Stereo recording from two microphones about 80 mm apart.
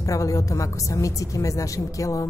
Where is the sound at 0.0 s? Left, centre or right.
Left.